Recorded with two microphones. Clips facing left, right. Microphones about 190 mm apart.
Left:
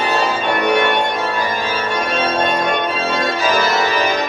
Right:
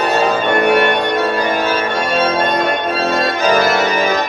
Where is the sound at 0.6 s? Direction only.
60° right (ahead or behind).